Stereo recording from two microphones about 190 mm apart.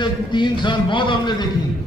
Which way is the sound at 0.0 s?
25° left (ahead or behind).